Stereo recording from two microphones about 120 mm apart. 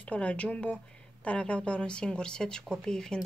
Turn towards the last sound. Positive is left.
turn(degrees=5)  # may be behind; listen again after turning